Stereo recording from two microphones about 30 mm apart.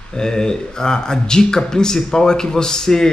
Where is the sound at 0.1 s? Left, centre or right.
Left.